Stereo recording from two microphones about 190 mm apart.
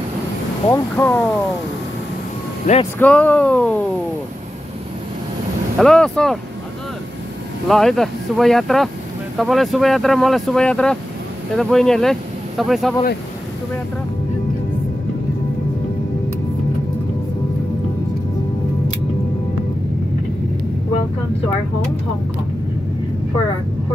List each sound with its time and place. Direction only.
0.7 s speech: 10° left (ahead or behind)
2.6 s speech: 35° left (ahead or behind)
3.0 s speech: 10° left (ahead or behind)
5.8 s speech: 5° left (ahead or behind)
7.6 s speech: centre (ahead or behind)